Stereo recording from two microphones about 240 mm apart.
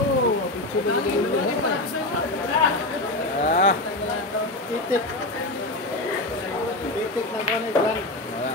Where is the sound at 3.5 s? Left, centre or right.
Left.